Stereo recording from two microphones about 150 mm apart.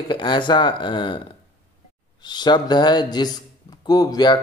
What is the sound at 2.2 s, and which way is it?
Speech, 30° left (ahead or behind).